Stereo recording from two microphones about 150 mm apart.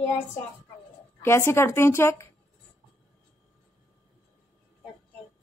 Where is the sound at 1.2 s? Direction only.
15° left (ahead or behind).